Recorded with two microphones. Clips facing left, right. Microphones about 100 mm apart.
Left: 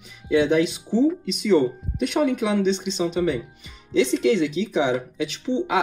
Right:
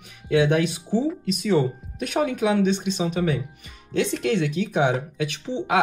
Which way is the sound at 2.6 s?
50° right (ahead or behind).